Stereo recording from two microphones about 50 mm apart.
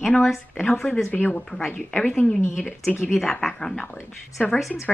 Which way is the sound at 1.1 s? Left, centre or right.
Left.